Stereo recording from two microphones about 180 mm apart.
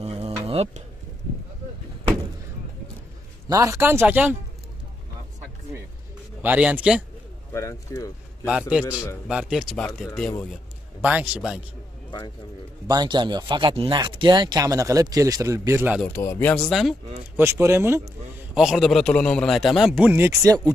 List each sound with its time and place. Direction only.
0.0 s a sound: 35° right (ahead or behind)
3.4 s speech: 20° right (ahead or behind)
6.4 s speech: 10° right (ahead or behind)
7.5 s speech: 15° left (ahead or behind)
8.5 s a man's voice: 5° right (ahead or behind)
8.8 s speech: 15° left (ahead or behind)
9.3 s a man's voice: 5° right (ahead or behind)
12.8 s speech: 20° right (ahead or behind)
16.0 s speech: 15° left (ahead or behind)
17.4 s speech: 15° right (ahead or behind)
18.5 s a man's voice: 5° right (ahead or behind)